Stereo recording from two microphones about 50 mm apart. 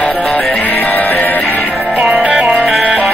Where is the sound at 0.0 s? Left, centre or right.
Centre.